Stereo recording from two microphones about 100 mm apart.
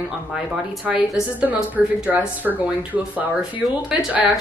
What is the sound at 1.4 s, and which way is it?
Speech, 15° right (ahead or behind).